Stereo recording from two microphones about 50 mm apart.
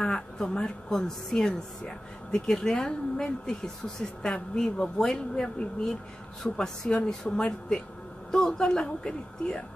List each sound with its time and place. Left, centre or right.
0.0 s a woman's voice: centre